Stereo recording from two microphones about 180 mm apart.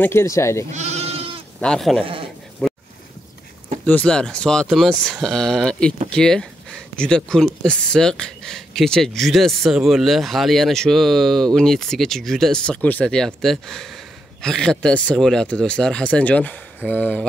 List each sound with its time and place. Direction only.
0.0 s speech: 15° left (ahead or behind)
0.7 s goat: 40° right (ahead or behind)
1.6 s speech: 5° left (ahead or behind)
2.6 s boat: 5° left (ahead or behind)
3.8 s speech: 5° left (ahead or behind)